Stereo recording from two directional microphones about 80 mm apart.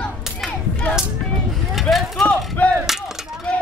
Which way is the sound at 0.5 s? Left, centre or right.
Left.